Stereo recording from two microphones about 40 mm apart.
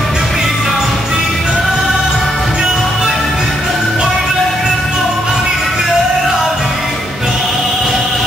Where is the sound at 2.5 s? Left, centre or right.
Centre.